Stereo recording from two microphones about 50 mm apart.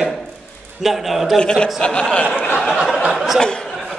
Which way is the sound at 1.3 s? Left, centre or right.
Centre.